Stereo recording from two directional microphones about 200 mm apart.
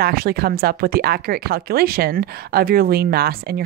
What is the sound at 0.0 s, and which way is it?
Speech, 50° right (ahead or behind).